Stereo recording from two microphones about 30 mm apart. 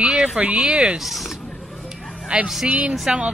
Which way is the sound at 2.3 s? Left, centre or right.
Right.